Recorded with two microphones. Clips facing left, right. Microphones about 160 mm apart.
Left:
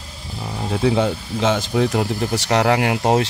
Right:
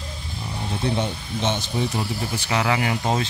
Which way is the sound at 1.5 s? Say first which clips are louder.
Left 8 dB; 90° left.